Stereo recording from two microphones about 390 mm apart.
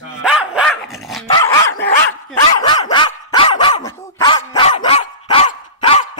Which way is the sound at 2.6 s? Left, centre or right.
Centre.